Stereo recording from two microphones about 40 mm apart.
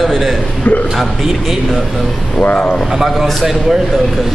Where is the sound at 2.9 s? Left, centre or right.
Centre.